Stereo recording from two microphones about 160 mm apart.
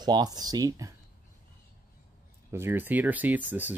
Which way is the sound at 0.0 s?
25° right (ahead or behind).